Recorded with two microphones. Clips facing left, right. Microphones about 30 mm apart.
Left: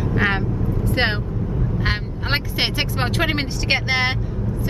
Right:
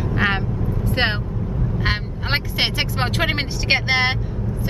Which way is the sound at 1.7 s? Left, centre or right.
Centre.